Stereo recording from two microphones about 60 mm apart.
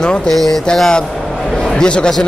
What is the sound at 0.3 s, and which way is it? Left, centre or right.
A man's voice, centre.